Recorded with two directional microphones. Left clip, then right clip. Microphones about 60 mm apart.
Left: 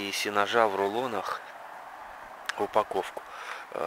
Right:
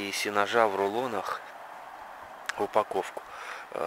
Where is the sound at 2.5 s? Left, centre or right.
Centre.